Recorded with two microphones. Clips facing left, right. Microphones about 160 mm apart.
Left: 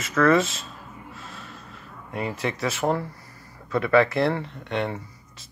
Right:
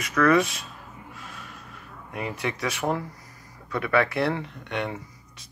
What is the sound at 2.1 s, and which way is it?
Speech, 30° left (ahead or behind).